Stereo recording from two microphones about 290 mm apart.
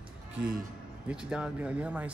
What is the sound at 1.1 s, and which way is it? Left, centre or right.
A man's voice, centre.